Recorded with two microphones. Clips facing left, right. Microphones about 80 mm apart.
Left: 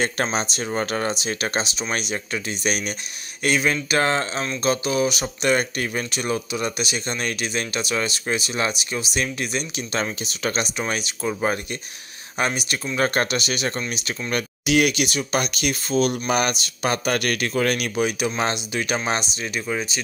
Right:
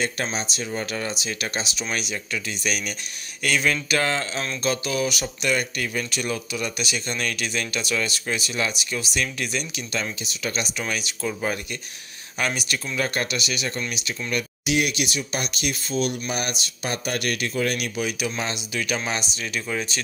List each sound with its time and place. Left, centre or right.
0.0 s speech: left
9.9 s speech: left
12.9 s speech: left
14.3 s speech: left
16.3 s speech: left
17.9 s speech: left; by 20.0 s centre